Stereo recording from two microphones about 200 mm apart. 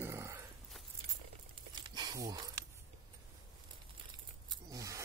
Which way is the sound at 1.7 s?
20° right (ahead or behind).